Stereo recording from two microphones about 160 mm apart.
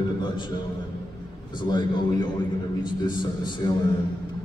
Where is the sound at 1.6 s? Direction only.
30° left (ahead or behind).